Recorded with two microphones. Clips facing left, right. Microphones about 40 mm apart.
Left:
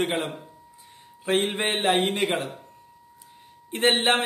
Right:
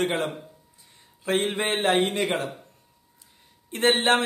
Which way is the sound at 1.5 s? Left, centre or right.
Left.